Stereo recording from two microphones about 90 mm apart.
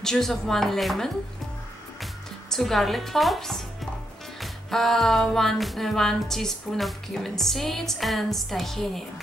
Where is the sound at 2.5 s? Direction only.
Centre (ahead or behind).